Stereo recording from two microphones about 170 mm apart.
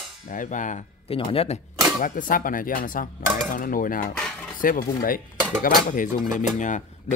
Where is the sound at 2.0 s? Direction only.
50° left (ahead or behind).